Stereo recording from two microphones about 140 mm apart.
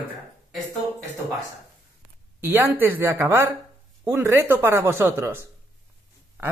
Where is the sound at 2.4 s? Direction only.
15° right (ahead or behind).